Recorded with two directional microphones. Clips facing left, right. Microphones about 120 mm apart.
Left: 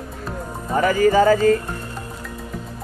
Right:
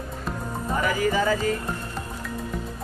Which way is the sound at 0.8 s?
45° left (ahead or behind).